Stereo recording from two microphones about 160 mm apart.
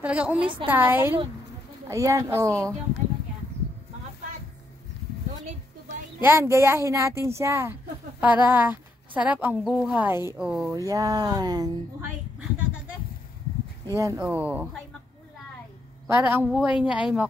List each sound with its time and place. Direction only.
0.0 s a woman's voice: 10° right (ahead or behind)
6.2 s a woman's voice: 15° right (ahead or behind)
13.9 s a woman's voice: 20° right (ahead or behind)
16.2 s speech: 15° right (ahead or behind)